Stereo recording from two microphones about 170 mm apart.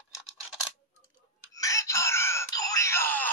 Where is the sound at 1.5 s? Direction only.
20° left (ahead or behind).